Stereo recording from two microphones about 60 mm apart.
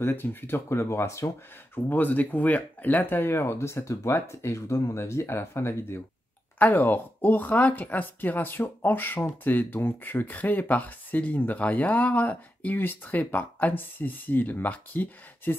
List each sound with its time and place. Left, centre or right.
0.0 s speech: left
1.9 s speech: left
6.6 s speech: left